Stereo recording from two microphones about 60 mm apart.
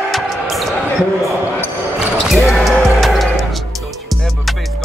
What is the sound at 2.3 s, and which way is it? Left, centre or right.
Basketball bounce, centre.